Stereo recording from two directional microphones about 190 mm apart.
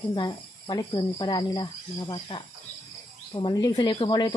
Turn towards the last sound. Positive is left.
turn(degrees=20)  # may be behind; listen again after turning